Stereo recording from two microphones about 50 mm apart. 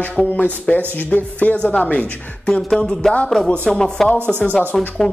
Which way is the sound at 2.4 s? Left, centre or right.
Centre.